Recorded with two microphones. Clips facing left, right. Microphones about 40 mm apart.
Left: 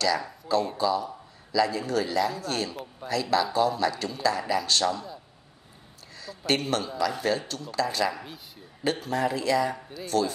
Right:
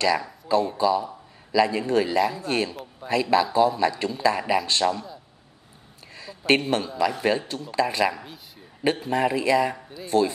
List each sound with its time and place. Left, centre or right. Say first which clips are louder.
0.7 s a man's voice: right 4 dB; centre
2.7 s a man's voice: even; centre
3.1 s speech: right 4 dB; right
6.1 s speech: right 6 dB; right